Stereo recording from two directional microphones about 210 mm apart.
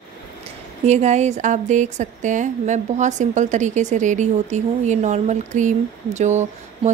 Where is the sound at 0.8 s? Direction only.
30° right (ahead or behind).